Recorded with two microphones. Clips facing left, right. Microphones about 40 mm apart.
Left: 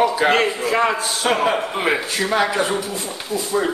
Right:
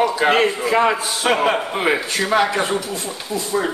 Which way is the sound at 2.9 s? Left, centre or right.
Centre.